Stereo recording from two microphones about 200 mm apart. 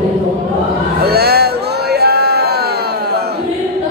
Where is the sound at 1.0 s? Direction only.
50° right (ahead or behind).